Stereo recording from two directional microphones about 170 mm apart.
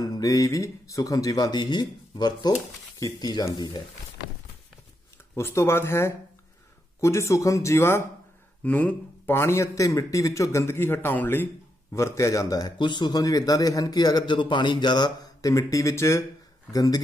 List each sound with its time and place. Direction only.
0.0 s speech: 20° left (ahead or behind)
5.3 s a man's voice: 15° left (ahead or behind)